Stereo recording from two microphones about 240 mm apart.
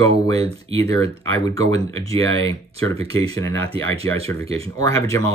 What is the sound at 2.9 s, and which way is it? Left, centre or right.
Speech, right.